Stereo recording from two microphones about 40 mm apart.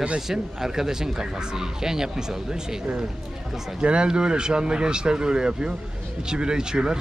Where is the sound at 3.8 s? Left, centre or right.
Right.